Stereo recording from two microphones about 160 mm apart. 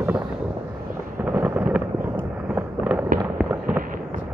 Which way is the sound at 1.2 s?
10° right (ahead or behind).